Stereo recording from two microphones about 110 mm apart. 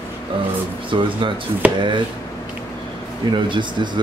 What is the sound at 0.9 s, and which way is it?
Speech, 50° right (ahead or behind).